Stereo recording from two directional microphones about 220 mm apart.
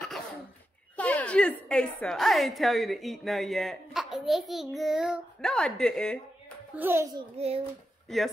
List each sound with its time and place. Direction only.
0.9 s a woman's voice: 5° left (ahead or behind)
6.7 s a child's voice: 10° right (ahead or behind)
7.2 s a child's voice: 25° right (ahead or behind)